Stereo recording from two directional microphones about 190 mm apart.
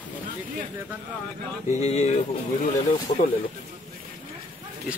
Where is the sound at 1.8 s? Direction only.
35° left (ahead or behind).